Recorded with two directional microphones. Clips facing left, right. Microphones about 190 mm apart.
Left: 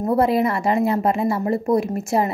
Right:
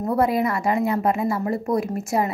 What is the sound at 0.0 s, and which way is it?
A woman's voice, 30° left (ahead or behind).